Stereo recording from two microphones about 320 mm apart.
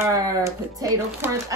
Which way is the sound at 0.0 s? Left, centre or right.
Centre.